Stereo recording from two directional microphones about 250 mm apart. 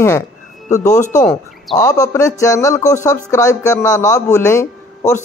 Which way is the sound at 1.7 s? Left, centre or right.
Centre.